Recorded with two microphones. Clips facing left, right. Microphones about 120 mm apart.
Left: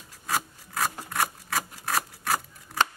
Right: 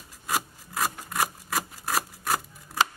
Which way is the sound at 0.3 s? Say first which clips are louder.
Even; 5° right (ahead or behind).